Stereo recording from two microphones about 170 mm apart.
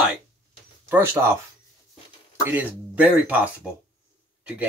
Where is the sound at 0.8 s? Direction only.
10° right (ahead or behind).